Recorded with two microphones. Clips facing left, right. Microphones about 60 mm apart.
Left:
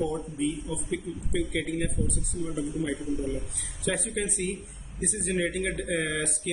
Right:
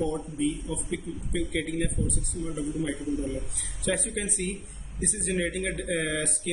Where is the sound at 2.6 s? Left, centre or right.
Right.